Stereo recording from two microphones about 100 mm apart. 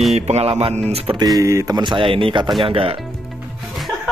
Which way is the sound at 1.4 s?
35° right (ahead or behind).